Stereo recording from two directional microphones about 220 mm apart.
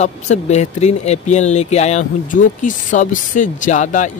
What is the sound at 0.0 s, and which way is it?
Speech, 30° left (ahead or behind).